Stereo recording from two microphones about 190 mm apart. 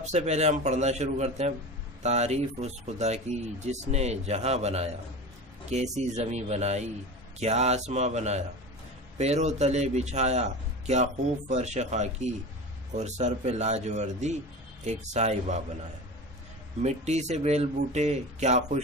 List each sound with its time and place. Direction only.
0.0 s a man's voice: 35° right (ahead or behind)
16.8 s a man's voice: 35° right (ahead or behind)